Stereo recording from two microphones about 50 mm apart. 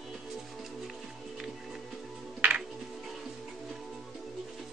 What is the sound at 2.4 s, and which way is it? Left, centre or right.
Music, right.